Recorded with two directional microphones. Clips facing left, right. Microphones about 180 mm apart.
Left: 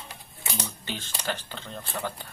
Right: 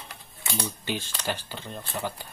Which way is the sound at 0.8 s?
10° right (ahead or behind).